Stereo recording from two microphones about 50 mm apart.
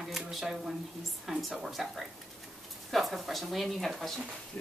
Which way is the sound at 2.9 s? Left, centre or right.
Centre.